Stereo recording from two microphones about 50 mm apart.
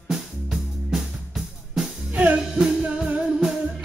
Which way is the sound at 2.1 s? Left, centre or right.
Right.